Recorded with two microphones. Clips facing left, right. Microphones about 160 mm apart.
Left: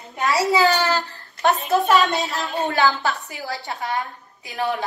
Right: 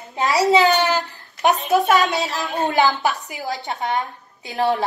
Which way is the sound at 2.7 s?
20° right (ahead or behind).